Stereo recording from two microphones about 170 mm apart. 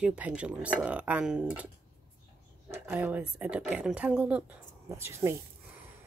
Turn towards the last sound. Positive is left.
turn(degrees=-15)  # may be behind; listen again after turning